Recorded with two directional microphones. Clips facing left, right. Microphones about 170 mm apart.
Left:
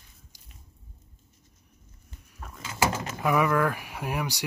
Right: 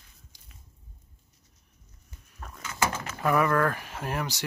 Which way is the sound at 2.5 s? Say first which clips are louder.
Left 2 dB; 20° left (ahead or behind).